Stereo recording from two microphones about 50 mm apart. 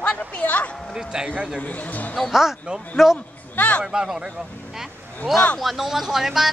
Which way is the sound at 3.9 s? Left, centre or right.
Centre.